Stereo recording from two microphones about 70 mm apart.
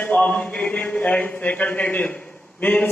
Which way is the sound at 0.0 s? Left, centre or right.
Left.